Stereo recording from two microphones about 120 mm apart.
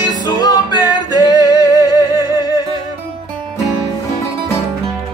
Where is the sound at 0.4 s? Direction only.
35° left (ahead or behind).